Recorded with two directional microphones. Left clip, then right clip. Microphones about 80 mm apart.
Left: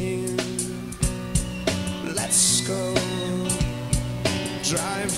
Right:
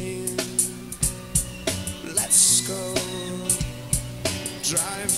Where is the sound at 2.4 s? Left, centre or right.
Left.